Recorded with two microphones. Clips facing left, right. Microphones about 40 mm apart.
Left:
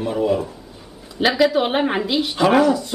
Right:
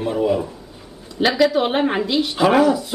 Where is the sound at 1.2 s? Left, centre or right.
Centre.